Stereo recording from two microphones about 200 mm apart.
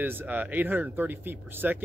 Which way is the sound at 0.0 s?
10° right (ahead or behind).